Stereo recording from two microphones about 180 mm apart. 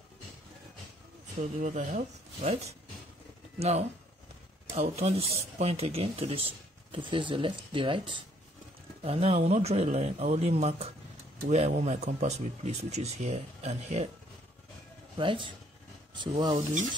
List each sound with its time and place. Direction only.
1.6 s speech: 45° right (ahead or behind)
15.1 s speech: 25° right (ahead or behind)